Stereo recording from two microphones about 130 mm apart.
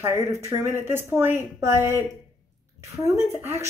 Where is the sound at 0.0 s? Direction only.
20° right (ahead or behind).